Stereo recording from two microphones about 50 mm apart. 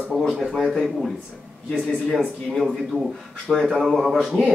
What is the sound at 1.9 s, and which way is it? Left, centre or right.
Speech, centre.